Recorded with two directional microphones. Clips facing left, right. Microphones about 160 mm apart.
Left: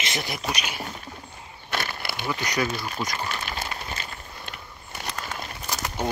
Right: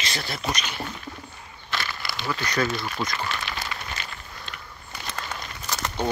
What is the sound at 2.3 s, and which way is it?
Speech, 15° left (ahead or behind).